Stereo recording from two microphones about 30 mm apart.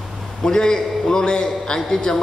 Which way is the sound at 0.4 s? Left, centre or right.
Left.